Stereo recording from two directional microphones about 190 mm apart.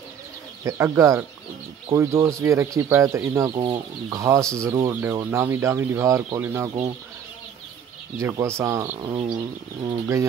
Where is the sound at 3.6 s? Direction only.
25° right (ahead or behind).